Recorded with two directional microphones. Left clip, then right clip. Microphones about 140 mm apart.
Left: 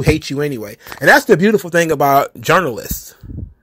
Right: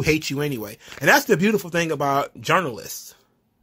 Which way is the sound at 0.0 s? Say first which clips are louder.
Left 5 dB; 25° left (ahead or behind).